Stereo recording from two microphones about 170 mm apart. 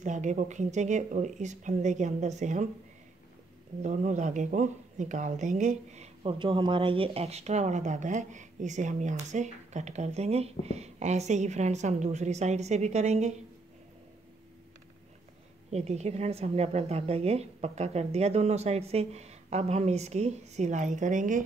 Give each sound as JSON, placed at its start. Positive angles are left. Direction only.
{"t": 0.0, "sound": "speech", "side_deg": -45}
{"t": 3.8, "sound": "a woman's voice", "side_deg": -45}
{"t": 15.7, "sound": "a woman's voice", "side_deg": -40}